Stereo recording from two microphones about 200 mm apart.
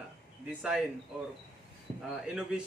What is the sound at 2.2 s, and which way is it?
Speech, 5° right (ahead or behind).